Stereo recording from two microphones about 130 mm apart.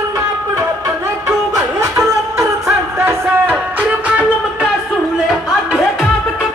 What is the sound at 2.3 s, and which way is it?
Music, 20° right (ahead or behind).